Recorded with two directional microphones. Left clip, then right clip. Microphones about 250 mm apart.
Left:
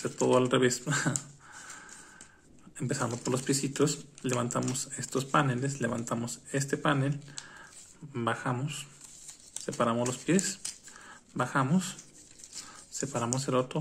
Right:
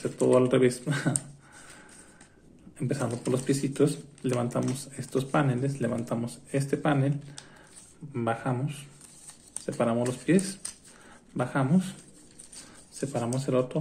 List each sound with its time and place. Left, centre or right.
0.0 s speech: centre
2.8 s speech: centre
12.9 s speech: centre